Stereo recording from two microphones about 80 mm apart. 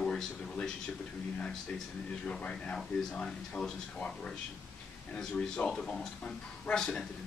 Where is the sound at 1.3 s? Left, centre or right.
Centre.